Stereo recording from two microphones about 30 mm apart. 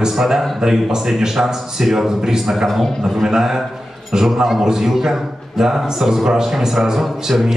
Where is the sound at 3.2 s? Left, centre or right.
Centre.